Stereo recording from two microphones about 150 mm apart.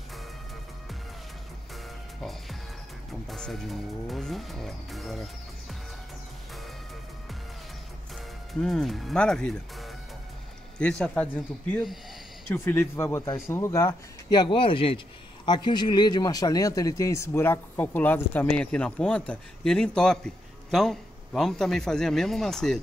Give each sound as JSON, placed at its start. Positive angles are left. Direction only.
{"t": 3.3, "sound": "vehicle", "side_deg": 5}
{"t": 8.5, "sound": "vehicle", "side_deg": 0}
{"t": 10.8, "sound": "speech", "side_deg": 5}
{"t": 20.7, "sound": "vehicle", "side_deg": 5}